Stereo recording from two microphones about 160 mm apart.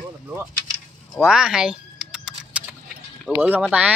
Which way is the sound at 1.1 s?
5° right (ahead or behind).